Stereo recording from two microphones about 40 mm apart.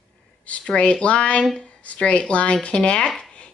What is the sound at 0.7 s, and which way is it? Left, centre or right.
A woman's voice, left.